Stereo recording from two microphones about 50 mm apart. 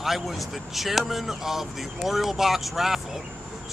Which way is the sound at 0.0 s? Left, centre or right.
Centre.